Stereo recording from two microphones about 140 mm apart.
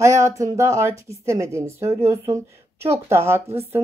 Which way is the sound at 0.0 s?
20° right (ahead or behind).